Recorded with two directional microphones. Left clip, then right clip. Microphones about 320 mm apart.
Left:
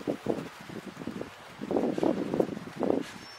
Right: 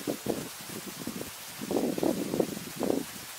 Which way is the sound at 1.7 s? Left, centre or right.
Right.